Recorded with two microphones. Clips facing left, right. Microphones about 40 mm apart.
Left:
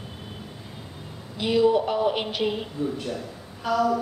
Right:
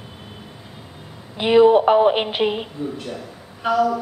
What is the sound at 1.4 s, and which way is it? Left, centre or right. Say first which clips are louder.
A woman's voice: right 8 dB; right.